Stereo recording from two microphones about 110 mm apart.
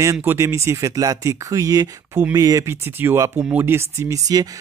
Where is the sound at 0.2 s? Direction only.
20° right (ahead or behind).